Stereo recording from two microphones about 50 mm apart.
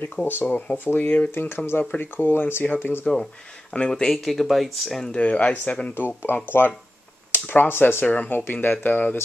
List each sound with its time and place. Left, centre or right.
0.2 s speech: left
0.5 s speech: left
1.3 s speech: left
3.7 s speech: centre
5.0 s speech: left
5.9 s speech: left